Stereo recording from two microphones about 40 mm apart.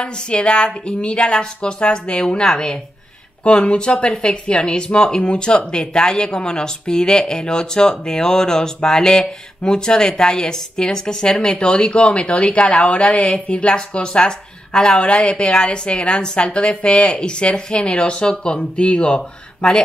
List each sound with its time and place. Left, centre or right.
0.0 s a woman's voice: left